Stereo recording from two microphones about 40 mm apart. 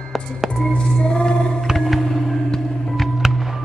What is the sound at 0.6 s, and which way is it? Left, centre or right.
Music, left.